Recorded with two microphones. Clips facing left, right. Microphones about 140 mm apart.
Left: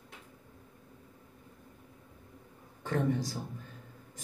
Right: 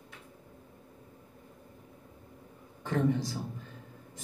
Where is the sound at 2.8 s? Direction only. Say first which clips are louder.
Right 2 dB; 45° left (ahead or behind).